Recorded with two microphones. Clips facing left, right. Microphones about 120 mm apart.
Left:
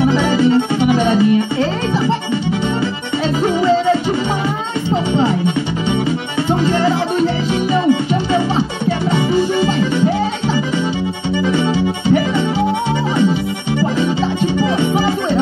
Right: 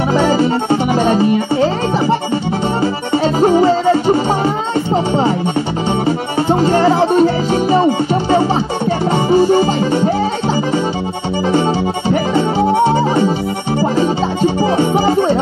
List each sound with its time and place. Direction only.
0.0 s music: 40° right (ahead or behind)
3.3 s music: 40° right (ahead or behind)
6.0 s music: 40° right (ahead or behind)
12.1 s music: 40° right (ahead or behind)